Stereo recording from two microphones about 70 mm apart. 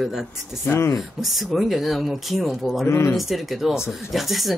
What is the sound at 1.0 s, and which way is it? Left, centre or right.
Speech, centre.